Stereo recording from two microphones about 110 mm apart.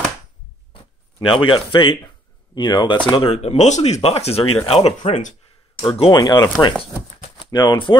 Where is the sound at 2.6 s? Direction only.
45° left (ahead or behind).